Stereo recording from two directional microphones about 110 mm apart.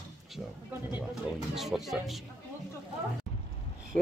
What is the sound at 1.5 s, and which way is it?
Speech, centre (ahead or behind).